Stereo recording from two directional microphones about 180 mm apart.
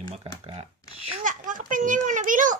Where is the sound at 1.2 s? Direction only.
45° right (ahead or behind).